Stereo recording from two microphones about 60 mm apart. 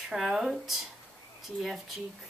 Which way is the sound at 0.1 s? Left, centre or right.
Centre.